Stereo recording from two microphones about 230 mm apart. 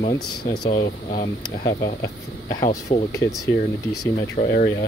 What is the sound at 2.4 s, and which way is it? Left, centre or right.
Speech, centre.